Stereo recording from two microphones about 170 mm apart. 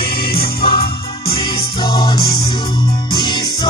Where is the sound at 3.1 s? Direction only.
25° left (ahead or behind).